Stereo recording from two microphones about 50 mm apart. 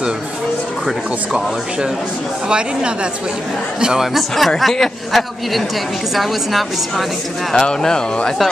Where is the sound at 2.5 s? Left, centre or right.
Centre.